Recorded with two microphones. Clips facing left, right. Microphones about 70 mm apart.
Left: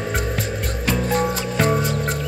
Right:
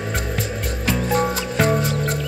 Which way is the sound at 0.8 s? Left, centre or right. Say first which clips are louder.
Right 1 dB; centre.